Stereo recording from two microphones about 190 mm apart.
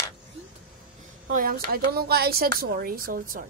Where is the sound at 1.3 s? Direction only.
50° right (ahead or behind).